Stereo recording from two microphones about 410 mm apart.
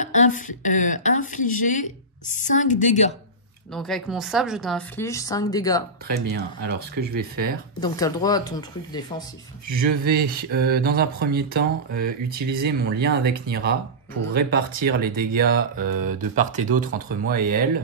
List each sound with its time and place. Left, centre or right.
0.0 s a woman's voice: centre
3.7 s speech: centre
6.0 s speech: right
7.8 s a woman's voice: centre
9.7 s speech: right